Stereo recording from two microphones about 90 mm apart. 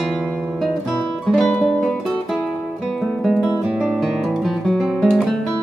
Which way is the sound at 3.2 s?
5° right (ahead or behind).